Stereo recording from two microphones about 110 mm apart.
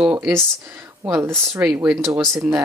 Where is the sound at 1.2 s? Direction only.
25° right (ahead or behind).